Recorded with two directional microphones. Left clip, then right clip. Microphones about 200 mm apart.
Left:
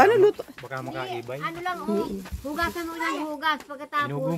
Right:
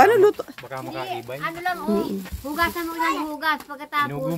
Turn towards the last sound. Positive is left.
turn(degrees=-45)  # may be behind; listen again after turning